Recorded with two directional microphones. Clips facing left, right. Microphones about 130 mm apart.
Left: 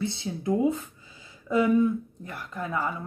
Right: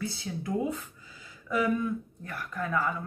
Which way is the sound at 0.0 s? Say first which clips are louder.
Left 5 dB; 25° left (ahead or behind).